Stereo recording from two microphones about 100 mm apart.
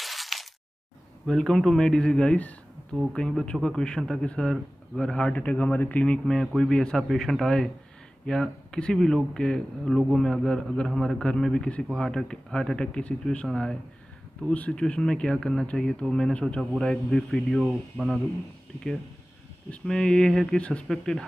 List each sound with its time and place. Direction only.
0.0 s a sound: centre (ahead or behind)
1.2 s speech: 5° left (ahead or behind)
19.7 s speech: 5° left (ahead or behind)